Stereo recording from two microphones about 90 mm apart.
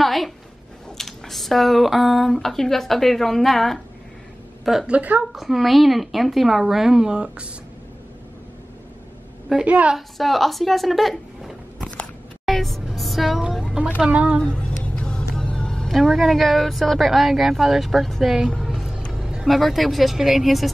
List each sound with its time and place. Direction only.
0.0 s a sound: centre (ahead or behind)
0.8 s a woman's voice: 5° left (ahead or behind)
4.9 s a woman's voice: 15° right (ahead or behind)
5.3 s a woman's voice: centre (ahead or behind)
9.7 s a woman's voice: 15° right (ahead or behind)
9.9 s a woman's voice: centre (ahead or behind)
11.8 s music: 5° left (ahead or behind); by 14.4 s 15° right (ahead or behind)
14.4 s a woman's voice: 10° left (ahead or behind); by 18.5 s 5° right (ahead or behind)
18.5 s music: centre (ahead or behind)
19.1 s speech: 5° right (ahead or behind)